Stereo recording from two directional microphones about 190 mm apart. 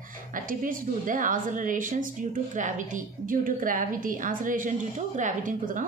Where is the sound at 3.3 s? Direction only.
45° right (ahead or behind).